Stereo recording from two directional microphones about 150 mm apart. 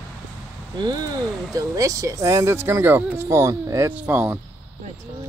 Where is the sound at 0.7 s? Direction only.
25° right (ahead or behind); by 4.3 s 10° right (ahead or behind).